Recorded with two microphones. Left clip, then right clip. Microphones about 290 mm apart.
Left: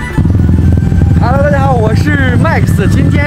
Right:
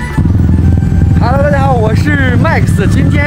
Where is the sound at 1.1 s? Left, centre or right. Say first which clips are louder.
Even; centre.